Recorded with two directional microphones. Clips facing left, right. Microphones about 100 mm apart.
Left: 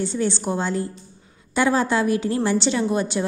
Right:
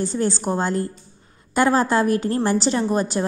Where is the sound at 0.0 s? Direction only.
40° right (ahead or behind).